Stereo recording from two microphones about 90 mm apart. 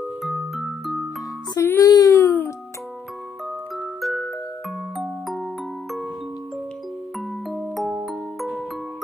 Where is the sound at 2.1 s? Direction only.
20° left (ahead or behind).